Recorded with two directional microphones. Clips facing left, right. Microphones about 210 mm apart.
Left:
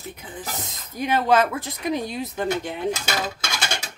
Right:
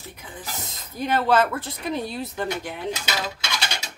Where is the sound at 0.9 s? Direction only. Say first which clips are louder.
Left 1 dB; 15° left (ahead or behind).